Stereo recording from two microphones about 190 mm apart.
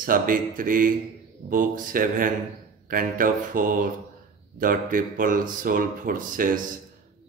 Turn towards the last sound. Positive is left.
turn(degrees=-45)  # may be behind; listen again after turning